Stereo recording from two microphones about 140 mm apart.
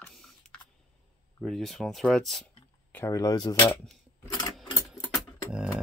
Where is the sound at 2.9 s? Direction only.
20° left (ahead or behind).